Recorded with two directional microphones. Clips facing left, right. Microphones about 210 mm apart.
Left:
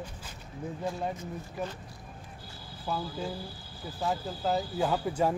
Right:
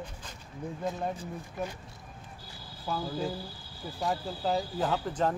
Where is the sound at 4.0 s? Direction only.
5° left (ahead or behind).